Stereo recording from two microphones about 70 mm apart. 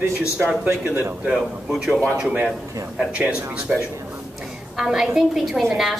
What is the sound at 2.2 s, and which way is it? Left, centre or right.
A woman's voice, centre.